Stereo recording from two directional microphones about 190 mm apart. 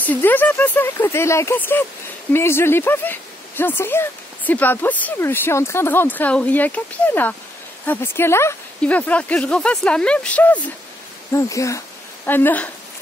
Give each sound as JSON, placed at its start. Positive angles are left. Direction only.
{"t": 0.0, "sound": "speech", "side_deg": 10}